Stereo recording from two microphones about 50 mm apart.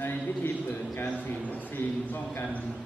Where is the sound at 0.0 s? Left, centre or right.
Left.